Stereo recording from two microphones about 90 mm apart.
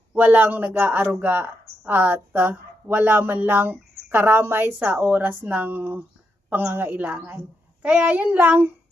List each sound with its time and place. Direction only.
0.1 s speech: 20° right (ahead or behind)
7.8 s child singing: 15° right (ahead or behind)